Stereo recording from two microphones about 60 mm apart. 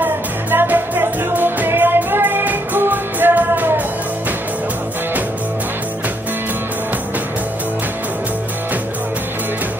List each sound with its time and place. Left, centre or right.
0.0 s music: right